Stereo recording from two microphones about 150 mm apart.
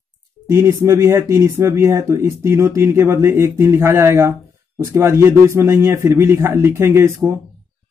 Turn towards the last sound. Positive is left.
turn(degrees=-15)  # may be behind; listen again after turning